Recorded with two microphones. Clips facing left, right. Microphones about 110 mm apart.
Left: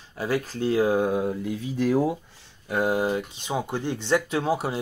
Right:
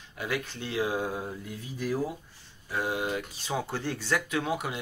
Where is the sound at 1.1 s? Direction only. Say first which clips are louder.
Left 10 dB; 75° left (ahead or behind).